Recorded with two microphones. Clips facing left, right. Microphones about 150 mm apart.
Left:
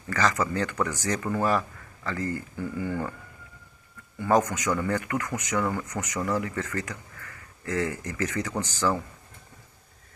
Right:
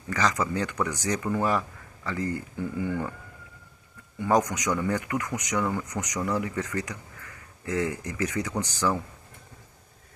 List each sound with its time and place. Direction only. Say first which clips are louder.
0.1 s speech: left 1 dB; 15° right (ahead or behind)
4.2 s speech: left 1 dB; 15° right (ahead or behind)